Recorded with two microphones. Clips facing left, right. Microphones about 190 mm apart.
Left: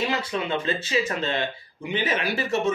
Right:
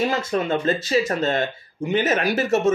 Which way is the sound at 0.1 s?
45° right (ahead or behind).